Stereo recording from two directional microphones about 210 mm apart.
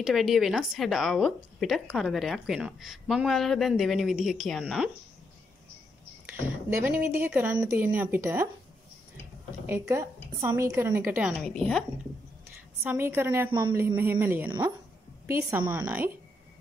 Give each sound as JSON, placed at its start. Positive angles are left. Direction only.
{"t": 0.0, "sound": "a woman's voice", "side_deg": 0}
{"t": 6.4, "sound": "a woman's voice", "side_deg": -10}
{"t": 9.7, "sound": "a woman's voice", "side_deg": -15}
{"t": 12.8, "sound": "a woman's voice", "side_deg": -10}
{"t": 13.5, "sound": "speech", "side_deg": -20}
{"t": 13.7, "sound": "a woman's voice", "side_deg": -10}